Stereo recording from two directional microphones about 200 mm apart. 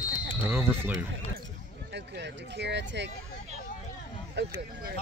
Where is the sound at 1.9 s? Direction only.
60° right (ahead or behind).